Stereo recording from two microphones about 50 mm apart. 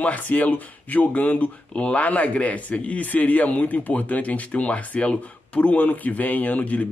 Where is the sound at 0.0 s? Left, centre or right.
Left.